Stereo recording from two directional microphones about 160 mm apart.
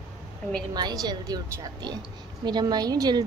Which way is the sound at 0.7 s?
25° right (ahead or behind).